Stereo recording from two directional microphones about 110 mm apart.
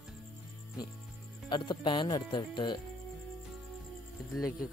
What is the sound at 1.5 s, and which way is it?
Speech, 45° left (ahead or behind).